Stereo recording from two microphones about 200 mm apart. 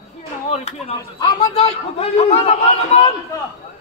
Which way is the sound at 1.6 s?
30° left (ahead or behind).